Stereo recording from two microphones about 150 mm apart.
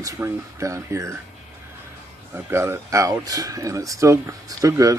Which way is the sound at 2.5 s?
15° right (ahead or behind).